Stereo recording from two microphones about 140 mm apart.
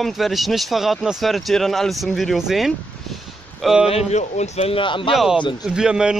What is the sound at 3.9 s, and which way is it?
Speech, 50° left (ahead or behind).